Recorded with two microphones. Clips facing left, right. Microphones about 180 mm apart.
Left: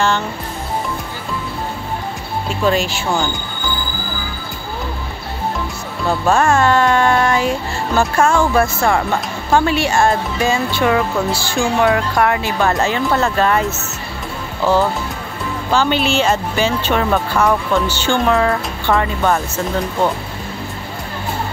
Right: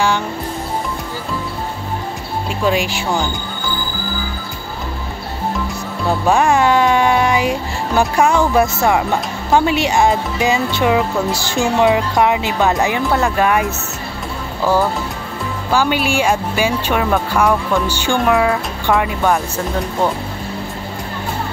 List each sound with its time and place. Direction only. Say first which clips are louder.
2.6 s speech: left 1 dB; 15° right (ahead or behind)
6.0 s speech: even; 15° right (ahead or behind)
15.7 s speech: even; 10° right (ahead or behind)